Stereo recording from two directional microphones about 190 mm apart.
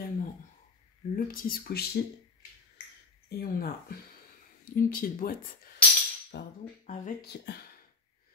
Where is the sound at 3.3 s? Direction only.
55° left (ahead or behind).